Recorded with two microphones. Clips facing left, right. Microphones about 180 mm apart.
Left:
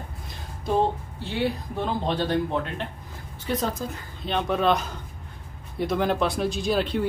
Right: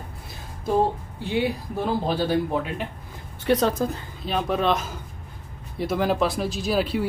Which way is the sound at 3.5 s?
70° right (ahead or behind).